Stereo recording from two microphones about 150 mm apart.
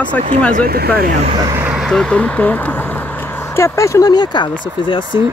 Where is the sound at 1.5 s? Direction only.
15° right (ahead or behind).